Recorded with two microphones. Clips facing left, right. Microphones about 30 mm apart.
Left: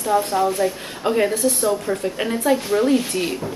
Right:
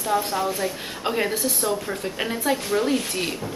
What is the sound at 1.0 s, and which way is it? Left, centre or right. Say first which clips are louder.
Speech: left 5 dB; right.